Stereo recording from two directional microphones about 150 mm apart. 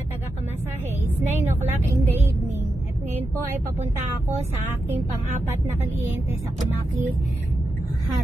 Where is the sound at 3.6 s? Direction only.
50° right (ahead or behind).